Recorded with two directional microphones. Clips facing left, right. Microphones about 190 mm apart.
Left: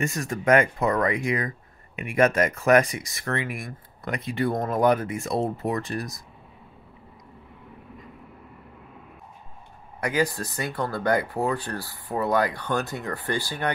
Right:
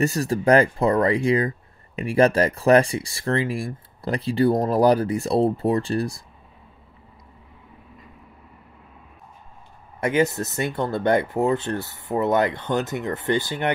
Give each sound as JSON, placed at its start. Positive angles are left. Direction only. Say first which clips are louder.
{"t": 0.0, "sound": "speech", "louder": "right 5 dB", "side_deg": -35}
{"t": 9.9, "sound": "speech", "louder": "right 4 dB", "side_deg": -25}